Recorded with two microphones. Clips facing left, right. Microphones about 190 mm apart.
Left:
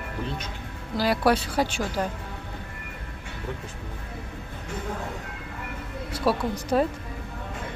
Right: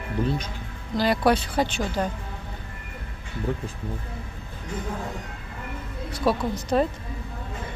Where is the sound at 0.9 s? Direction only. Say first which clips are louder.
Right 1 dB; 5° left (ahead or behind).